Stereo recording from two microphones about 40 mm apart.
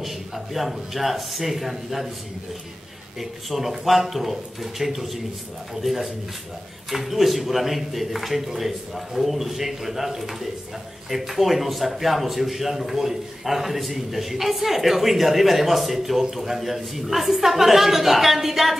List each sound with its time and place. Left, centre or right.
0.0 s a man's voice: centre
3.2 s a man's voice: centre